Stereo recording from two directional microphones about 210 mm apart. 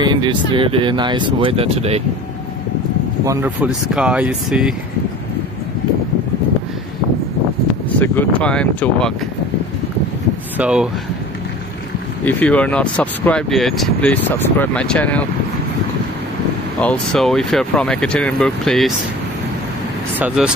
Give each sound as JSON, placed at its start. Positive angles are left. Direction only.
{"t": 0.0, "sound": "speech", "side_deg": -20}
{"t": 3.3, "sound": "speech", "side_deg": -10}
{"t": 8.0, "sound": "speech", "side_deg": 5}
{"t": 10.6, "sound": "speech", "side_deg": -5}
{"t": 12.3, "sound": "speech", "side_deg": 5}
{"t": 16.8, "sound": "speech", "side_deg": 5}
{"t": 20.2, "sound": "speech", "side_deg": -5}